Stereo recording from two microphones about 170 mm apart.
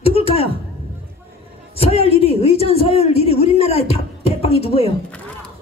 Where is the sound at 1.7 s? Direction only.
35° left (ahead or behind).